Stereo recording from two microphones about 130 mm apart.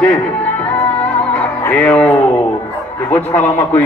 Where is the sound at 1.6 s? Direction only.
15° left (ahead or behind).